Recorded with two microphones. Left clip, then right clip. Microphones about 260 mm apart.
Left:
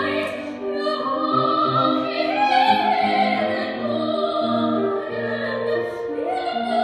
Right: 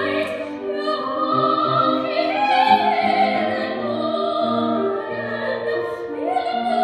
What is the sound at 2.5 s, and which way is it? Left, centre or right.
Music, centre.